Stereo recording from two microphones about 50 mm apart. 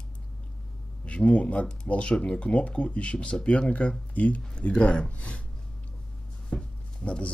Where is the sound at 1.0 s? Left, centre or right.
Left.